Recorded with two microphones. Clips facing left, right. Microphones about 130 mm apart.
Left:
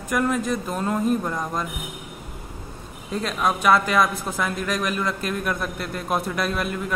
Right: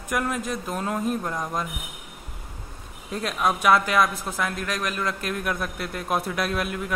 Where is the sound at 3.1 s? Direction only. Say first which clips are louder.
Left 1 dB; 5° right (ahead or behind).